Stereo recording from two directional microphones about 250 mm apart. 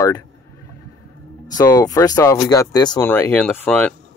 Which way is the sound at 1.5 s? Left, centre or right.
Centre.